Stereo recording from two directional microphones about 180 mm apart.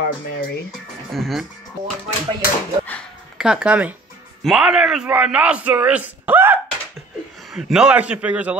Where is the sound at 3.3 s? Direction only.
5° right (ahead or behind).